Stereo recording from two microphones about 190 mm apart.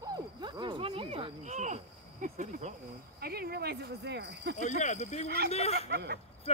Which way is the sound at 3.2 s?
55° right (ahead or behind).